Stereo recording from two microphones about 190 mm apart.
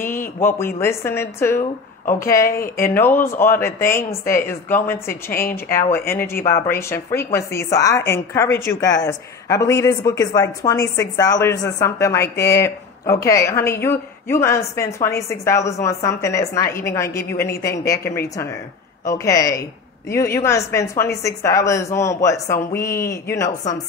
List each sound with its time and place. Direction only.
0.4 s a woman's voice: 10° left (ahead or behind)
2.8 s a woman's voice: 10° left (ahead or behind)